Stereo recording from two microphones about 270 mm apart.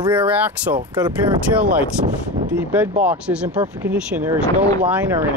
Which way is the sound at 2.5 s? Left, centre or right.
Centre.